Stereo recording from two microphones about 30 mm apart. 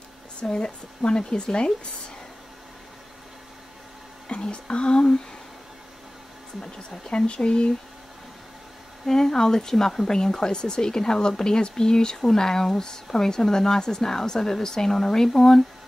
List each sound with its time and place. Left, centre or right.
0.4 s speech: left
4.3 s speech: left
7.1 s speech: left
9.0 s speech: centre